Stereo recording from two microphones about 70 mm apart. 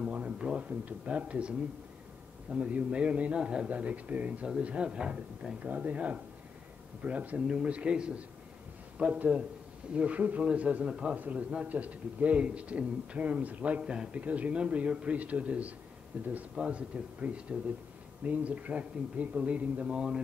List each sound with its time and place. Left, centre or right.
0.0 s speech: centre
2.5 s a man's voice: centre